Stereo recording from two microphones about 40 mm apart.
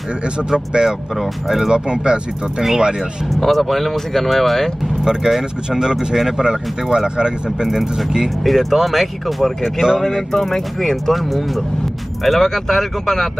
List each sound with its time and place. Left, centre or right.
0.5 s speech: centre
1.7 s speech: right
3.3 s speech: centre
5.0 s speech: centre
6.4 s speech: right
8.5 s speech: centre